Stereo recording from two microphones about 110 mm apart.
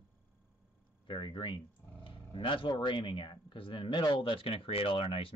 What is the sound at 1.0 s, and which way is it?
Speech, 45° left (ahead or behind).